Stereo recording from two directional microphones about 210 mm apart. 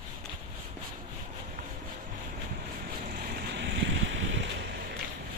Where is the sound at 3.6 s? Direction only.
60° right (ahead or behind).